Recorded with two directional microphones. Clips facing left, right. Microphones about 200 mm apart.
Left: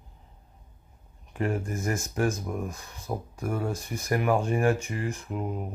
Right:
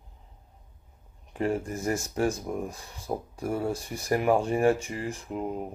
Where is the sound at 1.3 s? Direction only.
30° right (ahead or behind).